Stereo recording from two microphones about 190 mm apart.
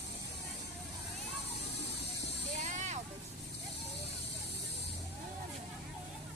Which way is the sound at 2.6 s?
40° right (ahead or behind).